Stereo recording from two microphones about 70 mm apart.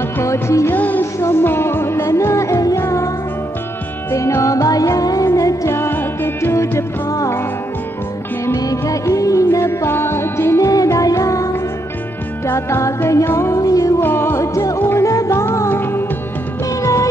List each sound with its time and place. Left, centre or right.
0.2 s music: left
0.7 s music: left
4.1 s music: left
5.7 s music: left
8.5 s music: left
10.7 s music: left
12.4 s music: left
13.6 s music: left
14.0 s music: left
14.8 s music: left
15.0 s music: left
15.3 s music: left
16.8 s music: left